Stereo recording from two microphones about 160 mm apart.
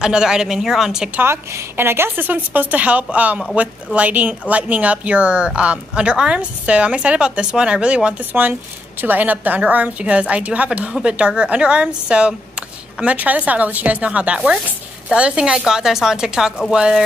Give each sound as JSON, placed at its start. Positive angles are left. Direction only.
{"t": 0.0, "sound": "a woman's voice", "side_deg": -5}